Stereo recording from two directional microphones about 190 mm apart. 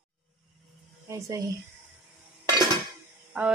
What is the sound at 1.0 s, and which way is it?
Speech, 15° right (ahead or behind).